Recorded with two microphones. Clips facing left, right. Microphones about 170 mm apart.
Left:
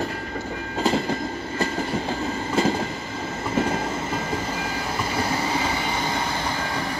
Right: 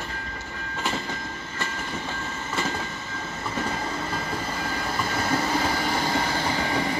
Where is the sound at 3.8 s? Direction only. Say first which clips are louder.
Left 3 dB; 5° left (ahead or behind).